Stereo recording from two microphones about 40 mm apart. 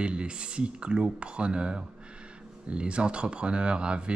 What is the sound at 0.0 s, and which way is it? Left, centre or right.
Speech, right.